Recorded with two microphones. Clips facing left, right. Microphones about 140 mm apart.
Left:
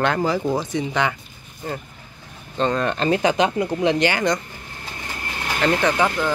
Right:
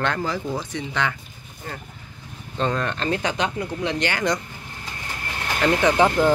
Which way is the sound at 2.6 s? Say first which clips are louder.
Left 3 dB; centre (ahead or behind).